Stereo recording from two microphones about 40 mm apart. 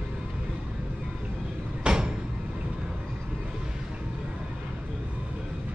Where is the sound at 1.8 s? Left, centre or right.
Right.